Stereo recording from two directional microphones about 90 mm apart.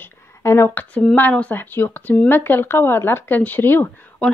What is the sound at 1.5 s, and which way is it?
A woman's voice, 25° left (ahead or behind).